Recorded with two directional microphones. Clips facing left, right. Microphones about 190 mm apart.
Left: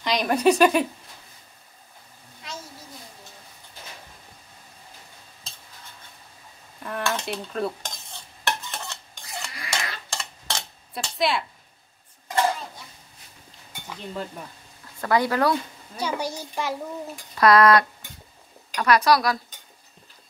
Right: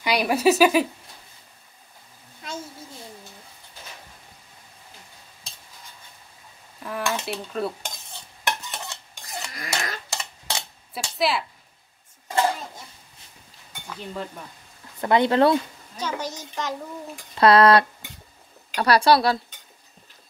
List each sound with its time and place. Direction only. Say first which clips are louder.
0.0 s stir: even; 10° right (ahead or behind)
6.8 s stir: even; 5° right (ahead or behind)
8.5 s stir: even; 15° right (ahead or behind)
9.5 s cutlery: right 2 dB; 45° right (ahead or behind)
10.0 s cutlery: right 1 dB; 5° right (ahead or behind)
15.0 s a woman's voice: right 4 dB; 25° right (ahead or behind)
16.0 s a child's voice: left 2 dB; 10° left (ahead or behind)
17.4 s a woman's voice: right 1 dB; 30° right (ahead or behind)